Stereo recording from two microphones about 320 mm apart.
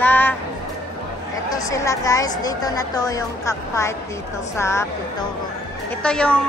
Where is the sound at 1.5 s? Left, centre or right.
Centre.